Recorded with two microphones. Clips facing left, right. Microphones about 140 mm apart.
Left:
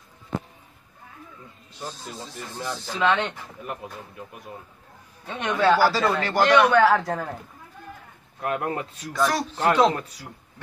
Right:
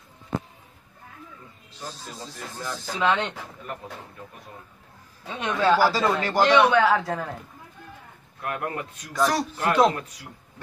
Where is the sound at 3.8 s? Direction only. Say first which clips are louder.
Left 1 dB; 10° left (ahead or behind).